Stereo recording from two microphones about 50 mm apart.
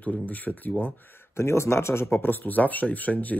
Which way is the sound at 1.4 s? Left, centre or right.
Left.